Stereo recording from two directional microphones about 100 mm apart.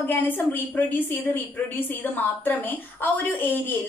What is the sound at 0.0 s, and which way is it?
A woman's voice, 20° left (ahead or behind).